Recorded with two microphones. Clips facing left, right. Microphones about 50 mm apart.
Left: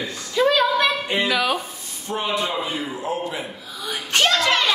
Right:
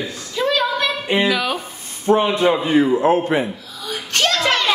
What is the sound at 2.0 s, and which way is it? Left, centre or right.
Speech, right.